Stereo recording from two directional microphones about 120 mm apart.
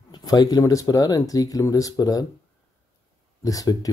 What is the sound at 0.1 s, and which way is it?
Speech, 35° left (ahead or behind).